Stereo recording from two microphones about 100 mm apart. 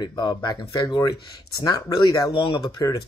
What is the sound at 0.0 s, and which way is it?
Speech, 45° left (ahead or behind).